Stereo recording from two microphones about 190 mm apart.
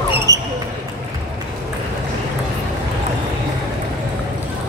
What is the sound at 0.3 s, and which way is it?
Basketball bounce, 15° right (ahead or behind).